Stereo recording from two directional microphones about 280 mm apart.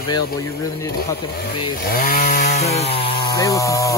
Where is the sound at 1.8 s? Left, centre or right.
Left.